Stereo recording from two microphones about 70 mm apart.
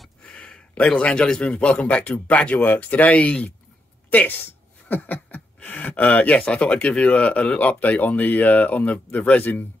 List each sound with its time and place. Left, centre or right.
0.2 s a man's voice: centre